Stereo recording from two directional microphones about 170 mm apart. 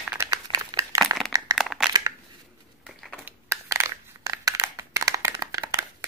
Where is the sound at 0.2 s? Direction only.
20° right (ahead or behind).